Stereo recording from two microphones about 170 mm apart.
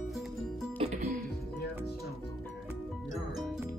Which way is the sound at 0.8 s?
40° right (ahead or behind).